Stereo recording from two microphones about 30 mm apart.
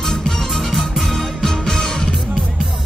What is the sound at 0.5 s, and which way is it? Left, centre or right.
Music, centre.